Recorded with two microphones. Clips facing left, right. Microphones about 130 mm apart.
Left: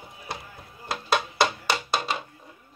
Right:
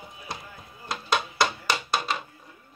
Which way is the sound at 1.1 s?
25° left (ahead or behind).